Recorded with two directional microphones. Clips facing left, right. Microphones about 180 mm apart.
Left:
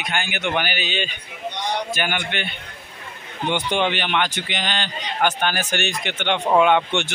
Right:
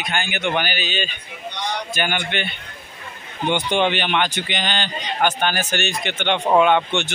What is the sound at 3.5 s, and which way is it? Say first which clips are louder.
Speech: right 2 dB; 5° left (ahead or behind).